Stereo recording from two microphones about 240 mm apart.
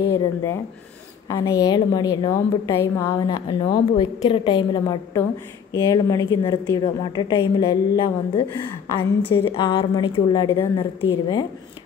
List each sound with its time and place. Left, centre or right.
0.0 s a woman's voice: centre
9.3 s a woman's voice: left